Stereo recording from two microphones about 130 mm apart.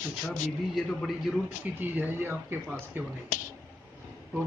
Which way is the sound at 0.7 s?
Centre (ahead or behind).